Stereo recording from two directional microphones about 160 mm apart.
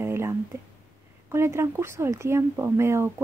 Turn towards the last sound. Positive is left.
turn(degrees=-15)  # may be behind; listen again after turning